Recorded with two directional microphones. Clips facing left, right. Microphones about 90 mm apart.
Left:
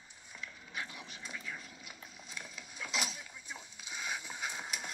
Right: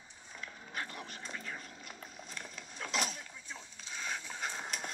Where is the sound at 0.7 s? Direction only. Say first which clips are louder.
Right 2 dB; 50° right (ahead or behind).